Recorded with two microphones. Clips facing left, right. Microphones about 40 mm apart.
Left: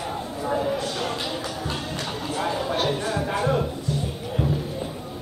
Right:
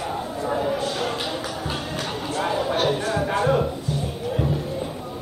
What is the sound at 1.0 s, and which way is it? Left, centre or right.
Music, centre.